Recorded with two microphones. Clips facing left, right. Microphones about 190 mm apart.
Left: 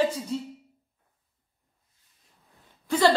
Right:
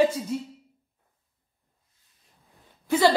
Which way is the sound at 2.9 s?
10° right (ahead or behind).